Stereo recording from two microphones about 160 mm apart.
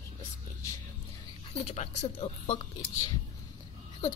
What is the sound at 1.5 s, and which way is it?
Speech, 45° left (ahead or behind).